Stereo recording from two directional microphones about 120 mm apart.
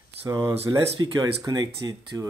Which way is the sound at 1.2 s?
35° right (ahead or behind).